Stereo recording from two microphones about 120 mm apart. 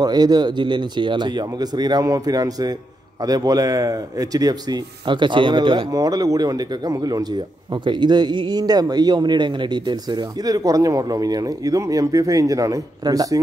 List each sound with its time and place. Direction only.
0.0 s speech: 35° right (ahead or behind)
5.9 s speech: 30° right (ahead or behind)